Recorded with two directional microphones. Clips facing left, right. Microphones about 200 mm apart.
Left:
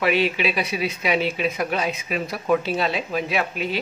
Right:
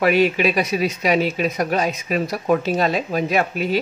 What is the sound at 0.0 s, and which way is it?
Speech, 45° right (ahead or behind).